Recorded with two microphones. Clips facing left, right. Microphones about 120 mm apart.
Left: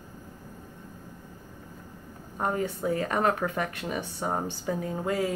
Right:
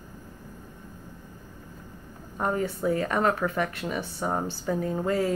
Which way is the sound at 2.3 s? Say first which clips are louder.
Right 1 dB; 25° left (ahead or behind).